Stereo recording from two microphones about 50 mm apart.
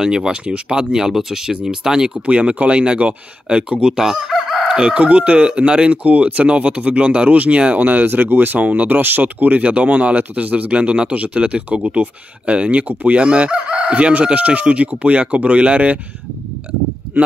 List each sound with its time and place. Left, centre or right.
0.0 s speech: centre
12.8 s speech: right
13.1 s speech: right